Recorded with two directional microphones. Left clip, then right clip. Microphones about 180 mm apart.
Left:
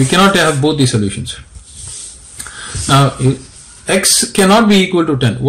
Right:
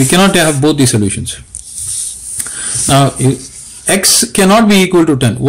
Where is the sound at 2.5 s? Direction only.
35° right (ahead or behind).